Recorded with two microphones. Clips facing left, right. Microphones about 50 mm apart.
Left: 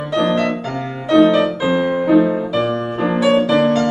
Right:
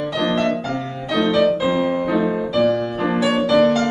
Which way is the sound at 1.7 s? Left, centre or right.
Centre.